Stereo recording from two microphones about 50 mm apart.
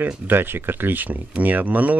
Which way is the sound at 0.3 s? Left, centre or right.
Right.